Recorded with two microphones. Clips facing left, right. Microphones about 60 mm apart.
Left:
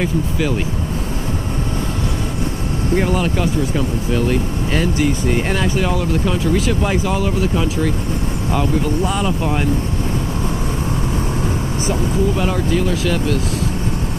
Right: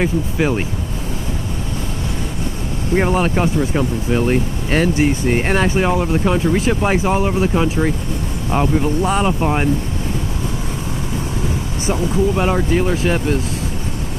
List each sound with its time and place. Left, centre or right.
0.0 s speech: right
3.0 s speech: right
11.9 s speech: right